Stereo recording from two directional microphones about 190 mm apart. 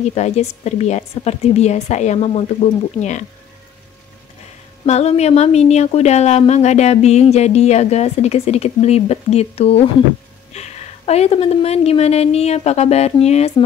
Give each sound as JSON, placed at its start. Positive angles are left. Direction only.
{"t": 0.1, "sound": "speech", "side_deg": 35}
{"t": 4.8, "sound": "speech", "side_deg": 35}